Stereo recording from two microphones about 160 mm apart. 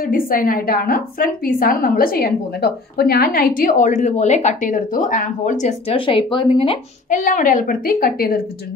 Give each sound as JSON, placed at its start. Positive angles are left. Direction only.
{"t": 0.0, "sound": "a woman's voice", "side_deg": 65}
{"t": 5.9, "sound": "speech", "side_deg": 30}
{"t": 7.1, "sound": "a woman's voice", "side_deg": 55}